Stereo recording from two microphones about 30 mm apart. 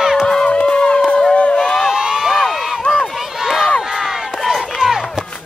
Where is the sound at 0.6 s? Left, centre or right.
Left.